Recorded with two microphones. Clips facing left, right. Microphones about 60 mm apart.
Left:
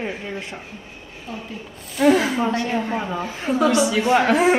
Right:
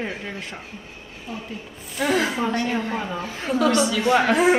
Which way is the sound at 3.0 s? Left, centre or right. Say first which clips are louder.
Left 3 dB; centre.